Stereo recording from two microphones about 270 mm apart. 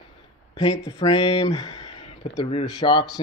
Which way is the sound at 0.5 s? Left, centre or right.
Centre.